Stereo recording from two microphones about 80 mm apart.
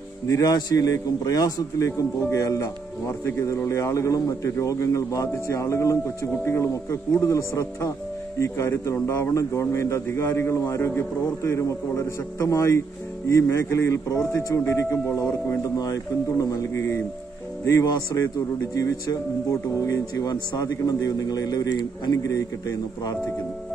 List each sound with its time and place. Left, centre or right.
0.3 s a man's voice: left
22.1 s a man's voice: left